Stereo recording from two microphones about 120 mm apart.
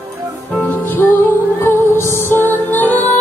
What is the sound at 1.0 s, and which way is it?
Music, 20° left (ahead or behind).